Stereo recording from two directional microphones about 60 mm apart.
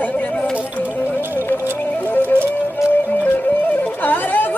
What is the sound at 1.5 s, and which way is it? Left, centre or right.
Music, left.